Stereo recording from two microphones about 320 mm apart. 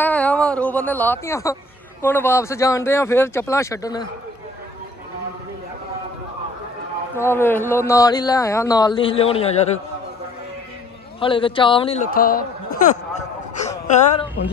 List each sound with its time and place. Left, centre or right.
0.0 s speech: centre
7.2 s a man's voice: centre
11.1 s speech: centre